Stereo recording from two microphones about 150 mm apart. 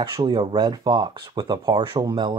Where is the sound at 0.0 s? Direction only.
30° right (ahead or behind).